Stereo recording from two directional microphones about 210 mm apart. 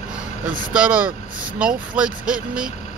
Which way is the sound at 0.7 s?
5° right (ahead or behind).